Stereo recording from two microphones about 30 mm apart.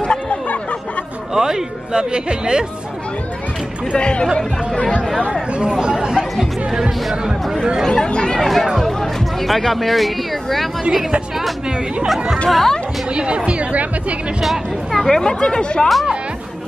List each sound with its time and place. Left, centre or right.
0.0 s a sound: left
1.3 s speech: right
4.0 s speech: left
5.5 s speech: right
7.9 s speech: left
8.4 s speech: centre
10.8 s speech: centre
12.4 s speech: centre
13.1 s speech: right
13.4 s speech: right
14.4 s speech: centre
15.0 s speech: centre